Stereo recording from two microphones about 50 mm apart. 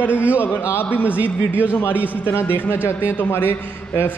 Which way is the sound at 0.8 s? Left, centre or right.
Left.